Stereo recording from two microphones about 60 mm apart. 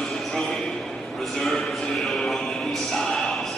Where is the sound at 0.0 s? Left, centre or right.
Centre.